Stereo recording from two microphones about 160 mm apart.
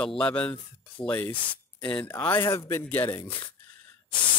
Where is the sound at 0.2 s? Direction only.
10° left (ahead or behind).